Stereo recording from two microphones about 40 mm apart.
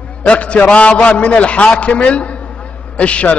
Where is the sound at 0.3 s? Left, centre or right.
Left.